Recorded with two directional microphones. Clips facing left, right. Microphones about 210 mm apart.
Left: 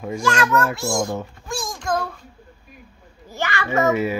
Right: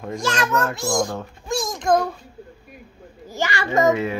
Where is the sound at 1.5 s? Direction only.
20° right (ahead or behind).